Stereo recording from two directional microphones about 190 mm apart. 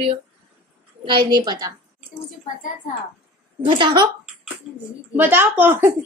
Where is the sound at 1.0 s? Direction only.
25° right (ahead or behind).